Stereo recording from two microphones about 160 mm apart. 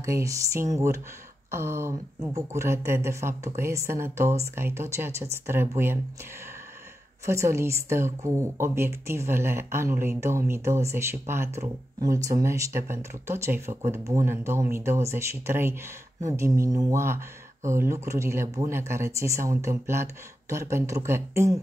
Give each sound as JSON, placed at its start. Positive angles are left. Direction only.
{"t": 0.0, "sound": "a sound", "side_deg": -20}
{"t": 1.5, "sound": "speech", "side_deg": -15}
{"t": 7.2, "sound": "speech", "side_deg": -15}